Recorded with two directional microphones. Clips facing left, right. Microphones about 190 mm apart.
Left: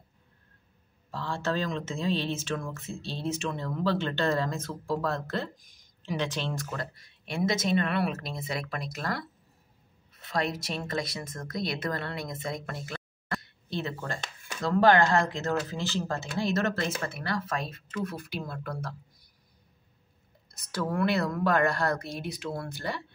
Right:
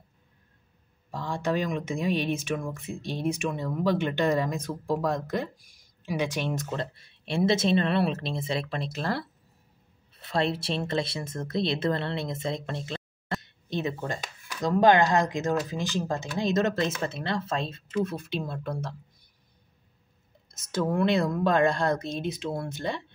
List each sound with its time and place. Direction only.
1.1 s speech: 15° right (ahead or behind)
20.7 s speech: 20° right (ahead or behind)